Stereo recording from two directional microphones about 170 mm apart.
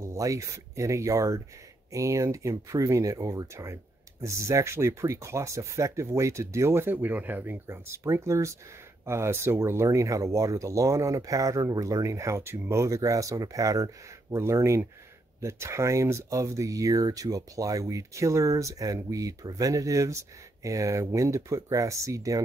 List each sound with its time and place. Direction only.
0.0 s speech: 20° right (ahead or behind)